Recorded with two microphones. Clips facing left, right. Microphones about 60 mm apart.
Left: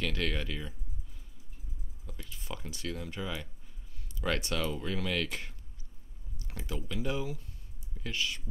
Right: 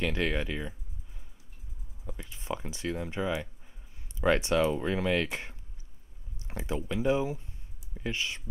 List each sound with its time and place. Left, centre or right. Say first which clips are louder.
0.0 s speech: right 4 dB; right
2.0 s speech: right 7 dB; right